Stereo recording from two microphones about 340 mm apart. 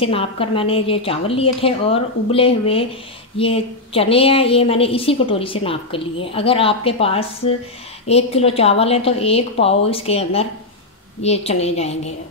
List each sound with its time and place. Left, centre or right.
0.0 s a woman's voice: centre